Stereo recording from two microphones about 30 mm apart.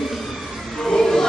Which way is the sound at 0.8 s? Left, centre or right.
Centre.